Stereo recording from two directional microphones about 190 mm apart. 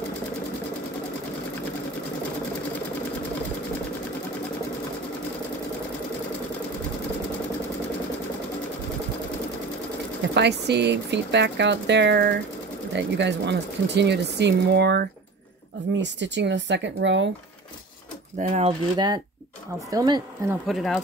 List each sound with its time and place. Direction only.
10.3 s speech: 65° right (ahead or behind)
18.4 s speech: 35° right (ahead or behind); by 20.5 s 20° right (ahead or behind)
20.6 s speech: centre (ahead or behind)